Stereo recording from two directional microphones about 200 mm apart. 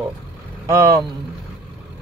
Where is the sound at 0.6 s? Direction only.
15° right (ahead or behind).